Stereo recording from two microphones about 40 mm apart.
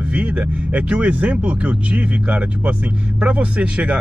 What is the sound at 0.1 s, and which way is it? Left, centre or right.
Speech, right.